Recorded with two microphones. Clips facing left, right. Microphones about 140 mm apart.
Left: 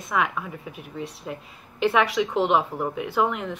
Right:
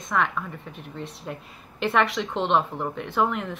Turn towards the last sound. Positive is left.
turn(degrees=0)  # may be behind; listen again after turning